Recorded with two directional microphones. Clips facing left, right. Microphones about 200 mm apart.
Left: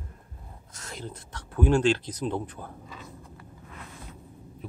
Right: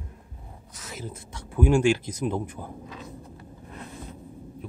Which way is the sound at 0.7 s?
5° right (ahead or behind).